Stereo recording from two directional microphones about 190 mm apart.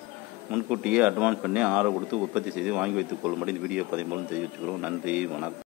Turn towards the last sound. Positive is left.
turn(degrees=-5)  # may be behind; listen again after turning